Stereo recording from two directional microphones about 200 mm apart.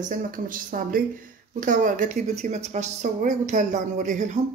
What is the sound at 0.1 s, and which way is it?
A woman's voice, 45° right (ahead or behind).